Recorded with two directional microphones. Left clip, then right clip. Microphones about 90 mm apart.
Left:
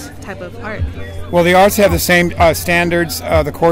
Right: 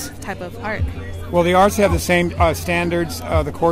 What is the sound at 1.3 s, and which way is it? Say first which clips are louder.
Speech: left 4 dB; 40° left (ahead or behind).